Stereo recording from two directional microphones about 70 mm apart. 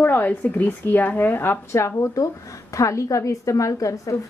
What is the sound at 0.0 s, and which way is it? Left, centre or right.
A woman's voice, left.